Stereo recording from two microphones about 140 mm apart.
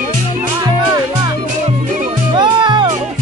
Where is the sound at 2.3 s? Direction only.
35° right (ahead or behind).